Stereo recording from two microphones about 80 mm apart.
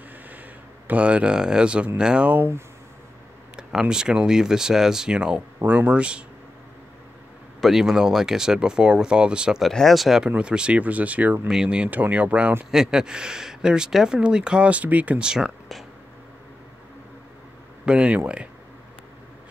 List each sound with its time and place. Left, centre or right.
0.8 s speech: centre
3.9 s speech: centre
5.6 s speech: right
7.6 s speech: centre
9.6 s speech: centre
17.8 s speech: centre